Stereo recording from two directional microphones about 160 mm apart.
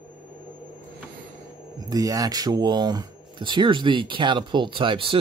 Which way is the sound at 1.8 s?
25° right (ahead or behind).